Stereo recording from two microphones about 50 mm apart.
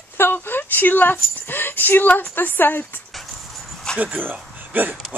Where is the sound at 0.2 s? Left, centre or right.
Left.